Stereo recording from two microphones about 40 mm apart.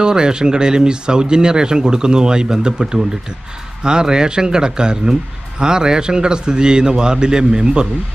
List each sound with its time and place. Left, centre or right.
0.0 s speech: centre